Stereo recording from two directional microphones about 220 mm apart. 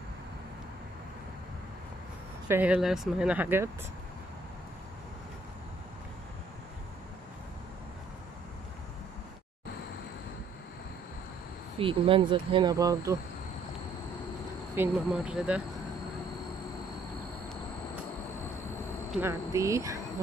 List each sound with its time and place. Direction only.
2.4 s speech: 10° right (ahead or behind)
11.8 s speech: 25° right (ahead or behind)
14.8 s speech: 5° right (ahead or behind)
19.2 s speech: 15° right (ahead or behind)